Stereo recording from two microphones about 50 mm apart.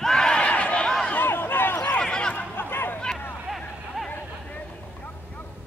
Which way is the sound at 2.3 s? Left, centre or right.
Left.